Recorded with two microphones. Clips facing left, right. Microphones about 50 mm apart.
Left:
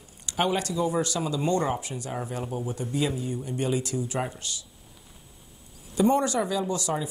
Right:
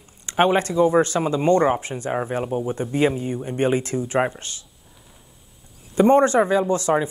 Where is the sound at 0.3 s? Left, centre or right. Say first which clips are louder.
Right 8 dB; right.